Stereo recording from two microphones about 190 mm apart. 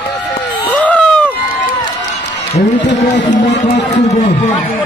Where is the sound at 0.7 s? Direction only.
5° left (ahead or behind).